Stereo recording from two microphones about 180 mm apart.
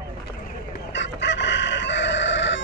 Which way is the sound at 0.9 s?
85° left.